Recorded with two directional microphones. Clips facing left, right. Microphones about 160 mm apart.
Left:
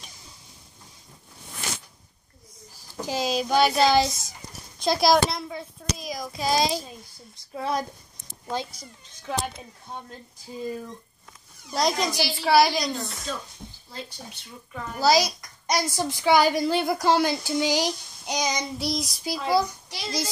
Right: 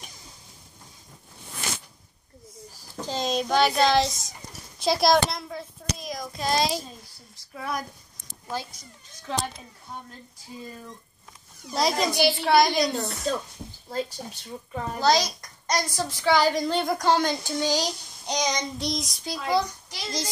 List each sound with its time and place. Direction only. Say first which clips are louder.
3.0 s a child's voice: left 1 dB; 10° left (ahead or behind)
7.5 s child singing: left 4 dB; 30° left (ahead or behind)
9.3 s child singing: even; 10° left (ahead or behind)
11.7 s a child's voice: even; centre (ahead or behind)
13.3 s a woman's voice: right 6 dB; 45° right (ahead or behind)
15.0 s a child's voice: left 2 dB; 5° left (ahead or behind)
16.0 s child singing: left 2 dB; 15° left (ahead or behind)